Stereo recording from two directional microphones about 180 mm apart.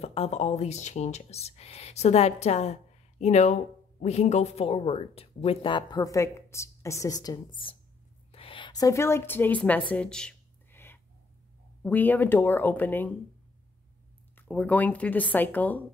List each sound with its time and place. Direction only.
0.0 s speech: 35° left (ahead or behind)
8.3 s a sound: 30° left (ahead or behind); by 11.0 s 10° left (ahead or behind)
11.8 s speech: 10° left (ahead or behind)
14.3 s speech: 5° left (ahead or behind)